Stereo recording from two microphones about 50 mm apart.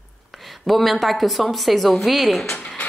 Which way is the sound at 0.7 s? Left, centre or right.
Centre.